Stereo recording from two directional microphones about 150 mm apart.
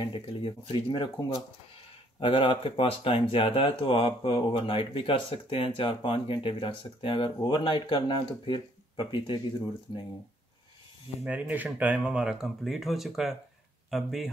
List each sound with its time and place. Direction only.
0.0 s speech: 35° left (ahead or behind)
2.1 s speech: 35° left (ahead or behind)
11.2 s speech: 10° right (ahead or behind)